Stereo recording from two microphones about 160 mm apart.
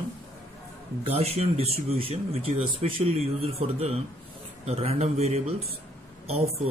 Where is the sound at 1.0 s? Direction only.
40° right (ahead or behind).